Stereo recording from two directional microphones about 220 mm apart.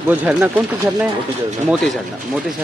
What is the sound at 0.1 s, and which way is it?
Speech, 5° right (ahead or behind).